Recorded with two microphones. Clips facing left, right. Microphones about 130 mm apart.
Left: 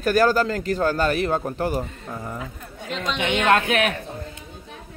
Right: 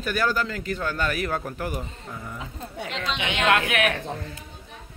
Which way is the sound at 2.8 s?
70° right (ahead or behind).